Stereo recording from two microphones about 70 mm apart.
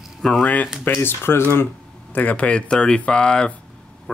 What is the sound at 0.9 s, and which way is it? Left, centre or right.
Speech, left.